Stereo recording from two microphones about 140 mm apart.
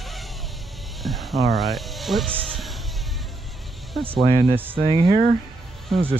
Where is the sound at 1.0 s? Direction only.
Centre (ahead or behind).